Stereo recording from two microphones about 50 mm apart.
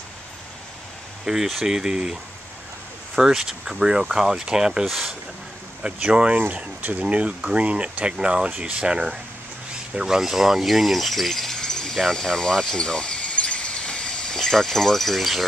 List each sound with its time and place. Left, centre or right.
1.2 s speech: centre
3.2 s speech: centre
4.8 s speech: centre
5.8 s speech: centre
13.3 s cricket: centre